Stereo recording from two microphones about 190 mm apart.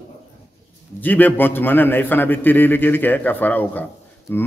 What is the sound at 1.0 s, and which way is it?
A man's voice, 10° left (ahead or behind).